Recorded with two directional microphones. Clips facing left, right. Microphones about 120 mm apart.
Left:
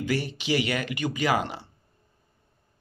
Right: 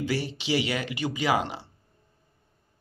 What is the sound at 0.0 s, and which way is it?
Speech, 30° right (ahead or behind).